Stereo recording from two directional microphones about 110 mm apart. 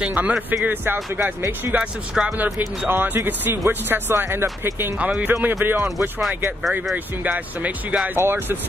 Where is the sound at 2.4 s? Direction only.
20° right (ahead or behind).